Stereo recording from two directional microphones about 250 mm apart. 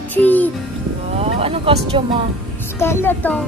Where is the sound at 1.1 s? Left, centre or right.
Right.